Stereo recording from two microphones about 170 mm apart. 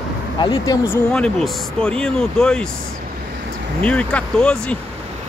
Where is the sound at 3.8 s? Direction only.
10° left (ahead or behind).